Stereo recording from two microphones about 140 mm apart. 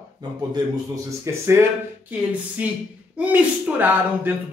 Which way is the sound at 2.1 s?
10° right (ahead or behind).